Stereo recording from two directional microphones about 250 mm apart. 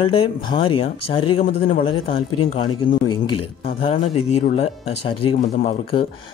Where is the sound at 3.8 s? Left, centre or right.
Left.